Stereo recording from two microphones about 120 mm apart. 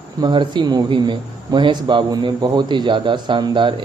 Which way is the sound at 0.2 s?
40° right (ahead or behind).